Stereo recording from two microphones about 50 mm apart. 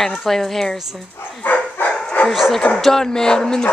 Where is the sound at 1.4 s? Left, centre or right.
Left.